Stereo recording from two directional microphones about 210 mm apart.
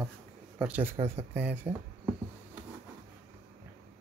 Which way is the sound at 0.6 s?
5° right (ahead or behind).